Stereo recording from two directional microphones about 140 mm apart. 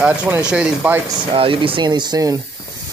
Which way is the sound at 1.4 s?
40° right (ahead or behind).